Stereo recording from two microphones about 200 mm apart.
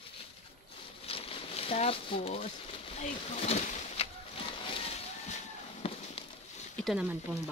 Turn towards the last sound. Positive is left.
turn(degrees=-5)  # may be behind; listen again after turning